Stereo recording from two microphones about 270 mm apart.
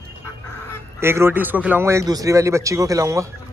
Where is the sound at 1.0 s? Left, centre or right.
Centre.